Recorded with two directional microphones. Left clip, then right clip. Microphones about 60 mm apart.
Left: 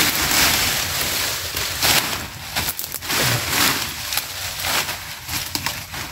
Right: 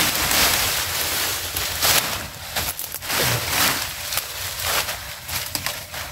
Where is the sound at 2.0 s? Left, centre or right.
Centre.